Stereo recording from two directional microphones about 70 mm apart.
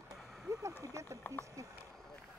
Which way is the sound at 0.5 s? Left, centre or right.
Right.